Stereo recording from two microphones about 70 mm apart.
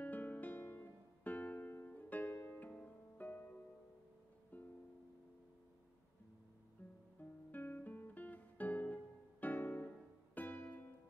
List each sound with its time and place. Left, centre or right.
0.0 s music: left
4.5 s music: left
6.8 s music: left